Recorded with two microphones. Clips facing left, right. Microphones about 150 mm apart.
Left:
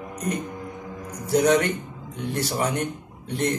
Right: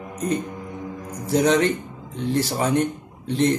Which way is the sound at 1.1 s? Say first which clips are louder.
Even; 25° right (ahead or behind).